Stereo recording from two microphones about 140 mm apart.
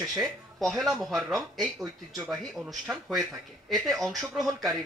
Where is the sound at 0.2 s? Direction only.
Centre (ahead or behind).